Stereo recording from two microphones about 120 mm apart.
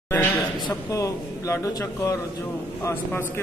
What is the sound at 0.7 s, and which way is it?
Speech, 25° left (ahead or behind).